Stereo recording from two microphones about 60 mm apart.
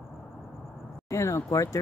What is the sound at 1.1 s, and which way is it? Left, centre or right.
Speech, left.